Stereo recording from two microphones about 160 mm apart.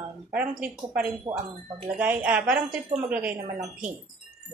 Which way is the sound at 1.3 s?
25° right (ahead or behind).